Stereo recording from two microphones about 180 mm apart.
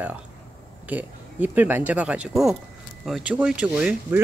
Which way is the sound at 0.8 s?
10° right (ahead or behind).